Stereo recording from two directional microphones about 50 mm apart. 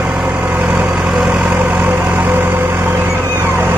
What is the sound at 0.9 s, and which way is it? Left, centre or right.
Vehicle, right.